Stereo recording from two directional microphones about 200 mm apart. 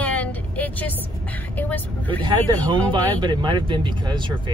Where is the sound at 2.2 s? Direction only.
25° right (ahead or behind).